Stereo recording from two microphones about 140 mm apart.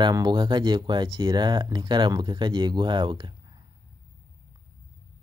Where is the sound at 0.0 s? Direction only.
30° right (ahead or behind).